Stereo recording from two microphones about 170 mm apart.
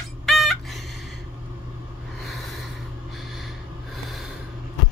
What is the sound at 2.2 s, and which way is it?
Snort, centre (ahead or behind).